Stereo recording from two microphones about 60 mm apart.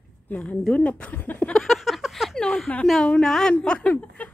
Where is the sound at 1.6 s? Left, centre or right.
Centre.